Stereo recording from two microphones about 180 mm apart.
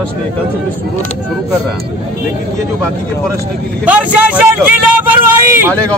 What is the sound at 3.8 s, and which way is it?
Speech, 10° right (ahead or behind).